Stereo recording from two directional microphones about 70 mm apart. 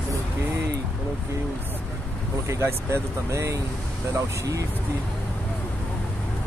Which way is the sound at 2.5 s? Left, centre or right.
Right.